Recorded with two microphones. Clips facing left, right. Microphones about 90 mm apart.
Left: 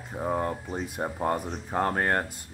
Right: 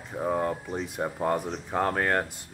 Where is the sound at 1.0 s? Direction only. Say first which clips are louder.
Right 1 dB; 20° left (ahead or behind).